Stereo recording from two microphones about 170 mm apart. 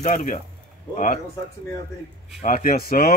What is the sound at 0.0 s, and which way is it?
Speech, 50° left (ahead or behind).